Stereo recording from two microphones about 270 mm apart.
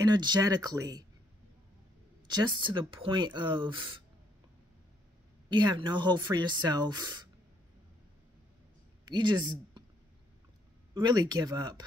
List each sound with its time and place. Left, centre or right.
0.0 s speech: centre
2.2 s speech: centre
5.5 s speech: centre
9.0 s speech: centre
11.0 s speech: centre